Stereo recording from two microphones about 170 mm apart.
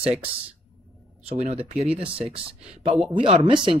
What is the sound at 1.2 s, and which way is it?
Speech, 35° right (ahead or behind).